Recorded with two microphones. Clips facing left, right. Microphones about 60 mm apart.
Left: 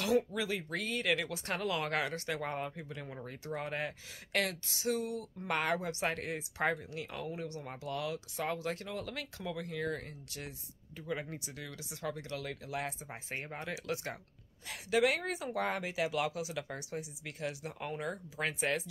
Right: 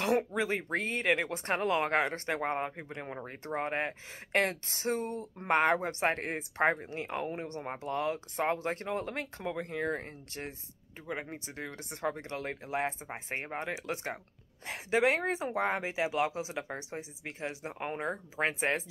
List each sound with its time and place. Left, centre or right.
0.3 s speech: right